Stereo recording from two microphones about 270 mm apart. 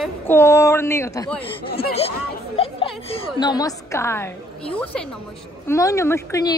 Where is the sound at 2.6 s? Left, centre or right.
Left; by 5.1 s centre.